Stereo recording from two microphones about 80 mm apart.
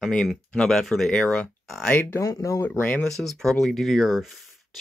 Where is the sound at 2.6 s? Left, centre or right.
Left.